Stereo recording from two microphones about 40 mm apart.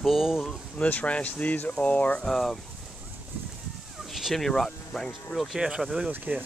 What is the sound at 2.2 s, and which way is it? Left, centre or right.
Speech, centre.